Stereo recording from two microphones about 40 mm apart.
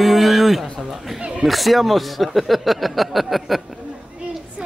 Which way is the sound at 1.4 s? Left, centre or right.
Centre.